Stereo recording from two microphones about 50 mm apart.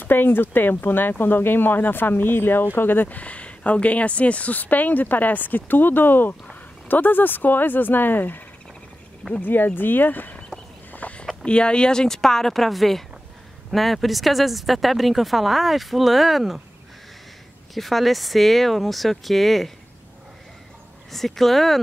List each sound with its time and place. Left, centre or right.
0.0 s speech: left
9.4 s speech: left
10.9 s a sound: left
11.4 s speech: left; by 16.6 s centre
17.7 s speech: centre
21.1 s speech: centre